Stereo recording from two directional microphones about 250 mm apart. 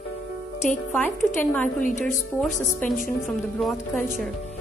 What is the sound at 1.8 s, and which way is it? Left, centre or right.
Speech, left.